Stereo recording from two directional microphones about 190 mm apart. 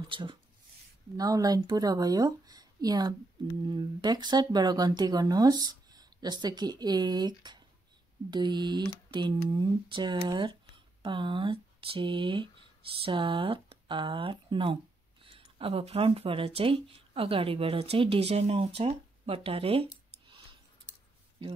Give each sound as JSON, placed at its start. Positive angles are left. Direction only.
{"t": 0.1, "sound": "speech", "side_deg": -25}